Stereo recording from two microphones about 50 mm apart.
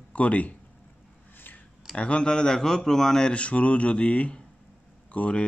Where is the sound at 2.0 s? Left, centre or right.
Centre.